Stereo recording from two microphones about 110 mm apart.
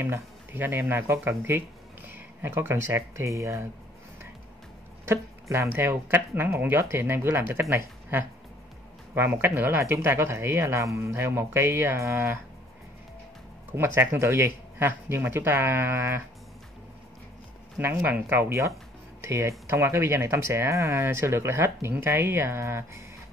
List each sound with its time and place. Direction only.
0.0 s speech: 20° right (ahead or behind)
5.0 s speech: 25° right (ahead or behind)
13.7 s speech: 20° right (ahead or behind)
17.7 s speech: 15° right (ahead or behind)